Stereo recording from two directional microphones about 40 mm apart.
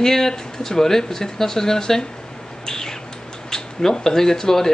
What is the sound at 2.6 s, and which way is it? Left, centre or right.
Bird, centre.